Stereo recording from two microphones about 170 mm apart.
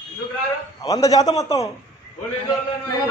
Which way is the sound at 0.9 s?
20° left (ahead or behind).